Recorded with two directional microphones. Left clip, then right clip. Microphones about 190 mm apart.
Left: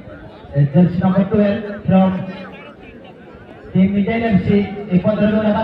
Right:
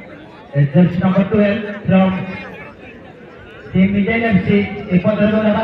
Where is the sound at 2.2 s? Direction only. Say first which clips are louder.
Right 3 dB; 65° left (ahead or behind).